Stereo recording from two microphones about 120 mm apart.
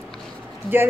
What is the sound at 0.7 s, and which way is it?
Speech, 15° right (ahead or behind).